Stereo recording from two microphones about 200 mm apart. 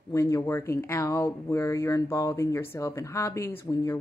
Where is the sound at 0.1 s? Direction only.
15° left (ahead or behind).